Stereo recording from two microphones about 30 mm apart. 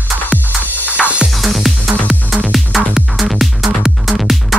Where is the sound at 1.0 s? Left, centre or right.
Centre.